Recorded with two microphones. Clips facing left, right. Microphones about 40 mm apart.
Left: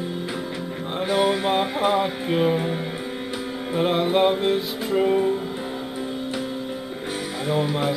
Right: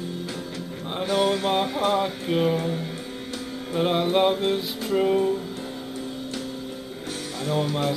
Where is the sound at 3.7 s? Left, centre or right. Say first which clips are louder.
Left 1 dB; centre.